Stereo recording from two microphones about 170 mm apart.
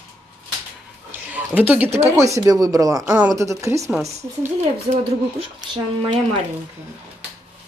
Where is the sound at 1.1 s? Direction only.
10° right (ahead or behind).